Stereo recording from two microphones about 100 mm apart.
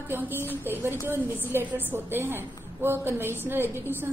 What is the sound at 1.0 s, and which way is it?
A woman's voice, 25° right (ahead or behind).